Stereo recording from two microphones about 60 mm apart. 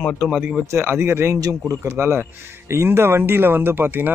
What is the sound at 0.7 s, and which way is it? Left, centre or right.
Speech, right.